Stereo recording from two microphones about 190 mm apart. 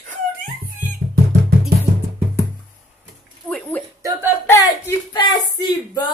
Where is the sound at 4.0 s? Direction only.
15° right (ahead or behind).